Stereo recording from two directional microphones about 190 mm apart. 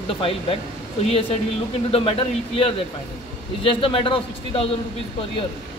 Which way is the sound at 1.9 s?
30° left (ahead or behind).